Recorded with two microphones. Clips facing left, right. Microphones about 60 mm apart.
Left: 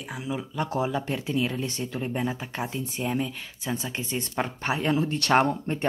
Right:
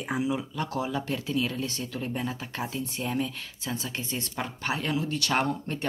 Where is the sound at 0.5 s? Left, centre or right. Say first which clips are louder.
Left 3 dB; left.